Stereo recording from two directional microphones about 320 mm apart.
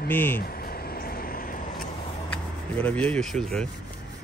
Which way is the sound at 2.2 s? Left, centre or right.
Centre.